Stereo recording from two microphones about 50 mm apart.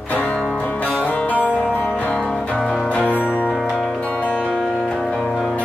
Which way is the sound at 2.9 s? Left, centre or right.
Left.